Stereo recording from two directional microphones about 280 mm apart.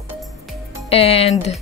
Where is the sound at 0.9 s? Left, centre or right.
Left.